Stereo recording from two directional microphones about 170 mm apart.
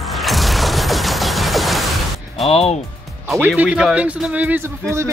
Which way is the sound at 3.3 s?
5° right (ahead or behind).